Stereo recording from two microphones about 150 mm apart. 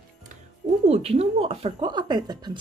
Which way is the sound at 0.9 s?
40° right (ahead or behind).